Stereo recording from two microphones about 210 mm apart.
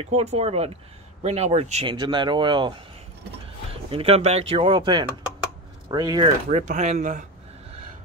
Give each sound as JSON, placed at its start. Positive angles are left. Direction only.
{"t": 0.0, "sound": "speech", "side_deg": -30}
{"t": 3.9, "sound": "speech", "side_deg": -30}
{"t": 6.6, "sound": "speech", "side_deg": -35}